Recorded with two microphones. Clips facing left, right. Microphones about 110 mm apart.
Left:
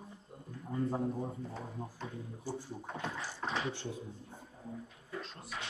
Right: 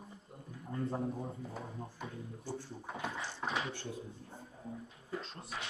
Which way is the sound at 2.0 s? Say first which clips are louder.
Even; 10° right (ahead or behind).